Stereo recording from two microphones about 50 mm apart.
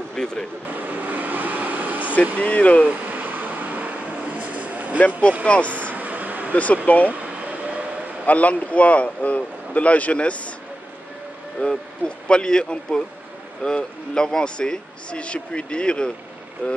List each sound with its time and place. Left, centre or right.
0.1 s speech: centre
0.7 s vehicle: right
2.4 s a man's voice: left
2.9 s a sound: right
4.9 s a man's voice: left
5.8 s a sound: right
6.5 s a man's voice: left
7.1 s air conditioning: right
8.3 s a man's voice: left
11.6 s a man's voice: centre